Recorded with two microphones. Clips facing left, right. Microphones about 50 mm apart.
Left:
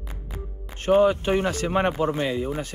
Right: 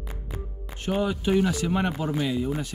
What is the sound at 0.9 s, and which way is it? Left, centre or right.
Speech, left.